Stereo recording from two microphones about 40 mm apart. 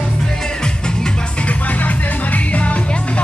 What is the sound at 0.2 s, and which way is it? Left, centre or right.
Music, centre.